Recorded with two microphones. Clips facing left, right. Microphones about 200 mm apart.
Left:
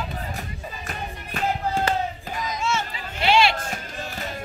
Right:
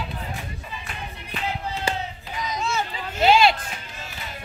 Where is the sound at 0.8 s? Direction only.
45° left (ahead or behind).